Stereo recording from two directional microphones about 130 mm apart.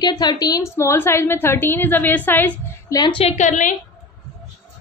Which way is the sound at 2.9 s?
30° left (ahead or behind).